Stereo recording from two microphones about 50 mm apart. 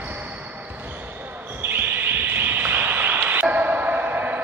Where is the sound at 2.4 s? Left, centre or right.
Right.